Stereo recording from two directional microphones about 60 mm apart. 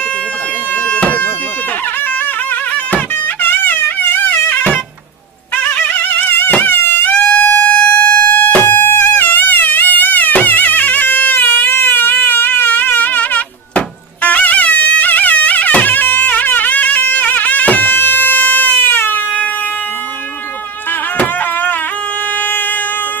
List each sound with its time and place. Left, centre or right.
0.8 s bagpipes: left
3.4 s music: left
6.3 s music: left
7.2 s music: left